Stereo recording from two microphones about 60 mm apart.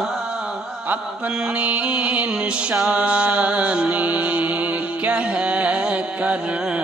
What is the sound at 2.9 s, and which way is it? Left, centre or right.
Mantra, right.